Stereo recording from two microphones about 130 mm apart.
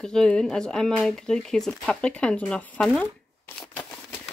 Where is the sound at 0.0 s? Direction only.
5° left (ahead or behind).